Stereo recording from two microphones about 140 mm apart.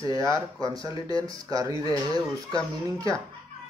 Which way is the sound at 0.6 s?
25° right (ahead or behind).